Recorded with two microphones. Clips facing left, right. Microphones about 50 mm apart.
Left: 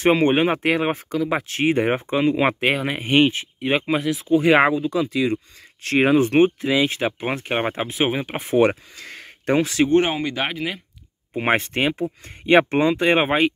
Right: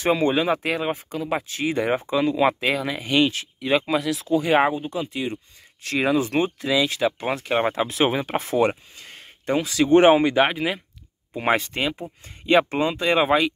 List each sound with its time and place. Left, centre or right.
0.0 s speech: left
1.6 s speech: left
4.4 s speech: left
5.8 s speech: left
7.8 s speech: centre
8.5 s speech: left
9.9 s speech: right
10.4 s speech: centre
11.3 s speech: left